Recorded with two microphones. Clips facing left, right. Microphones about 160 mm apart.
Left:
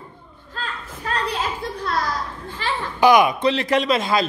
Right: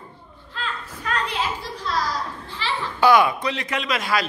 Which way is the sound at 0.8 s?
30° left (ahead or behind).